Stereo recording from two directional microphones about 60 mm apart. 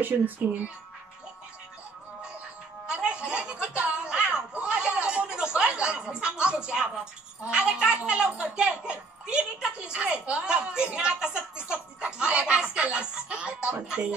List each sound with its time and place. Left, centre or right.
0.0 s speech: right
2.9 s chuckle: centre
7.4 s a child's voice: centre